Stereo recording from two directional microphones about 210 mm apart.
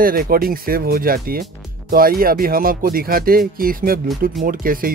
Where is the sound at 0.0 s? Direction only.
45° right (ahead or behind).